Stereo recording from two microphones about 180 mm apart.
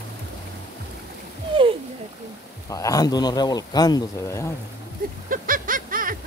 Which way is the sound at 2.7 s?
20° left (ahead or behind).